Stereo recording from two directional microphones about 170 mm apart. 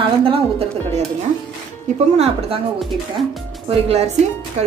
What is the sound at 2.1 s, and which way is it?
Speech, 40° right (ahead or behind).